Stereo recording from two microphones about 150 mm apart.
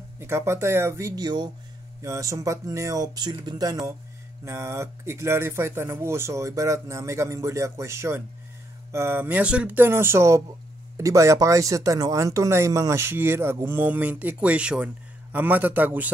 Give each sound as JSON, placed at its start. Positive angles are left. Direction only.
{"t": 0.2, "sound": "speech", "side_deg": -15}